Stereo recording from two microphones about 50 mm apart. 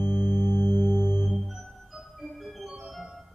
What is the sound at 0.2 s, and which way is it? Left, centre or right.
Music, centre.